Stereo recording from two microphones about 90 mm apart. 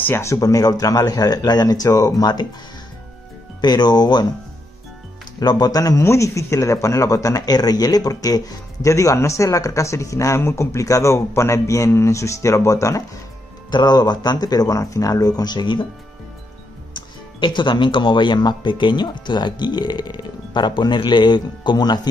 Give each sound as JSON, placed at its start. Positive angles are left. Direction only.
{"t": 0.0, "sound": "speech", "side_deg": 30}
{"t": 3.6, "sound": "speech", "side_deg": 50}
{"t": 5.4, "sound": "speech", "side_deg": 50}
{"t": 6.0, "sound": "speech", "side_deg": 35}
{"t": 13.7, "sound": "speech", "side_deg": 55}
{"t": 16.9, "sound": "speech", "side_deg": 60}